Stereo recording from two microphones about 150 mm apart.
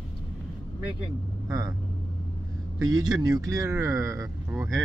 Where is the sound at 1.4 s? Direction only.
25° right (ahead or behind).